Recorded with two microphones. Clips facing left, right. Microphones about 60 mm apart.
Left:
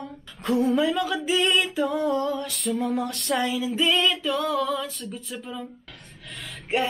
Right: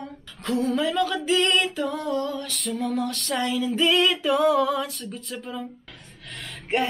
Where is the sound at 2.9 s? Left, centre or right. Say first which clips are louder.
Even; left.